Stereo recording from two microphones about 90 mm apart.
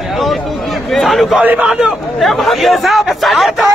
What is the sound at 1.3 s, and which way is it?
Speech, 15° right (ahead or behind).